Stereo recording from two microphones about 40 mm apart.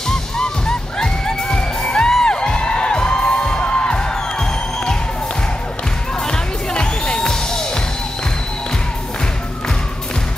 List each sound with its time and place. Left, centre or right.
0.1 s music: centre
6.2 s music: centre